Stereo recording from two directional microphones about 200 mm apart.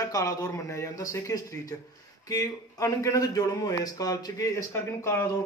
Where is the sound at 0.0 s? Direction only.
15° left (ahead or behind).